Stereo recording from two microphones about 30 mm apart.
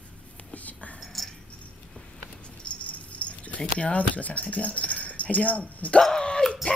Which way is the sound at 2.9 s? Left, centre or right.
Left.